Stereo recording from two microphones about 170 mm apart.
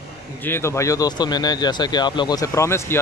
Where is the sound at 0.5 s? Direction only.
15° left (ahead or behind).